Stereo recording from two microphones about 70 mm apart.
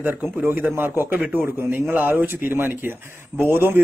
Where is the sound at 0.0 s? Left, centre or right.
Right.